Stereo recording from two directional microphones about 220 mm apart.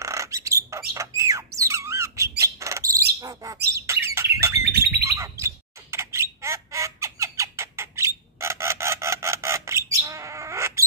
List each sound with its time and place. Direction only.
0.0 s bird: 15° right (ahead or behind)
0.9 s squawk: 15° right (ahead or behind)
3.2 s bird: 15° right (ahead or behind)
5.0 s squawk: 15° right (ahead or behind)